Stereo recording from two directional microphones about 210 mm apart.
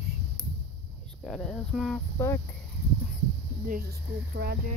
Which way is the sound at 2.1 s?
15° left (ahead or behind).